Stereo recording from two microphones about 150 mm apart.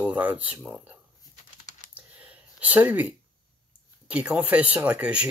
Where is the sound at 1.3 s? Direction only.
50° left (ahead or behind).